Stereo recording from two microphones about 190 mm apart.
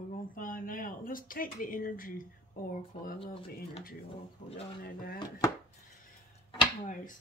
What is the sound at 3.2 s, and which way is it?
Speech, 30° left (ahead or behind).